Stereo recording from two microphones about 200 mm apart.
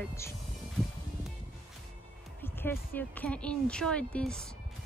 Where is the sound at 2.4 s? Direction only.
10° left (ahead or behind).